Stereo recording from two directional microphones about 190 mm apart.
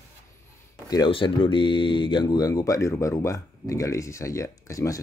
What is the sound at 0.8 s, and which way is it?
Speech, 20° left (ahead or behind).